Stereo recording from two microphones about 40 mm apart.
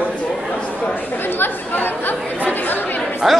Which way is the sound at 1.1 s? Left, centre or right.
Left.